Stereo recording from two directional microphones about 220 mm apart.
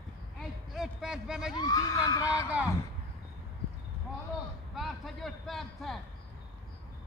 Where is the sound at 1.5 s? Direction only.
15° left (ahead or behind).